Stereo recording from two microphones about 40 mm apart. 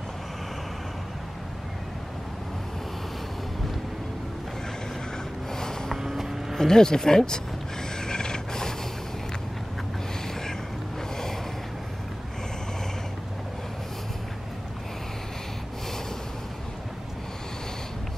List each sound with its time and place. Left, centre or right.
5.5 s a sound: centre
6.0 s vehicle: centre
6.5 s speech: centre
8.0 s mechanisms: centre